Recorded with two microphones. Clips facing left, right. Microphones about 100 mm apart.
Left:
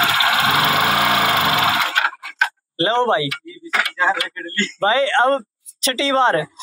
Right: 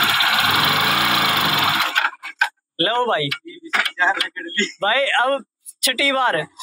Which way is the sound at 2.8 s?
20° left (ahead or behind).